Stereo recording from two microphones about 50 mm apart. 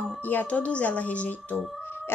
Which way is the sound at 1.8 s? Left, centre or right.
Left.